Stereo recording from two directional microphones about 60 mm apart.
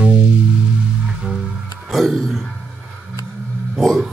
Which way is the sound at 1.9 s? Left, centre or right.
Centre.